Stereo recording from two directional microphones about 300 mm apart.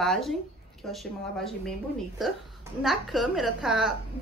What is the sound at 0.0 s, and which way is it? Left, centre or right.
Speech, centre.